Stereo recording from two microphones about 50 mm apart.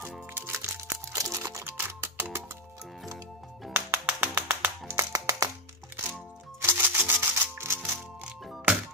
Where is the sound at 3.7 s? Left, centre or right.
Right.